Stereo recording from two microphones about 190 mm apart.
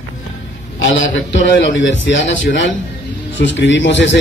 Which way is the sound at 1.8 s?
70° left (ahead or behind).